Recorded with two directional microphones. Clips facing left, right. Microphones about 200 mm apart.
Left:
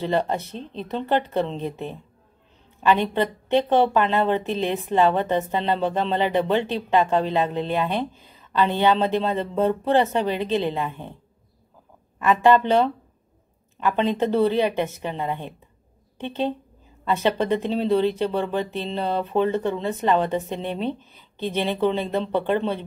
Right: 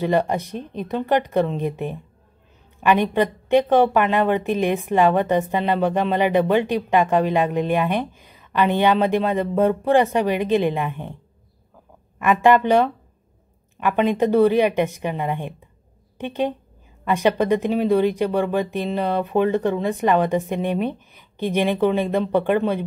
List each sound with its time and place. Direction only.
0.0 s a woman's voice: 15° right (ahead or behind)
12.2 s a woman's voice: 15° right (ahead or behind)
13.8 s a woman's voice: 15° right (ahead or behind)